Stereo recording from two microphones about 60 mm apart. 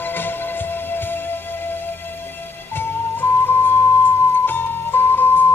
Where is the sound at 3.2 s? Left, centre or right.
Left.